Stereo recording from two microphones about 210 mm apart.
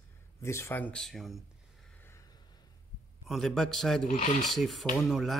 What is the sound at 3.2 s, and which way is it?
A man's voice, centre (ahead or behind).